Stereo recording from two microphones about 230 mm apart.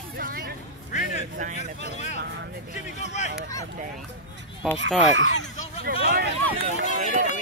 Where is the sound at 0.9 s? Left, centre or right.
Left.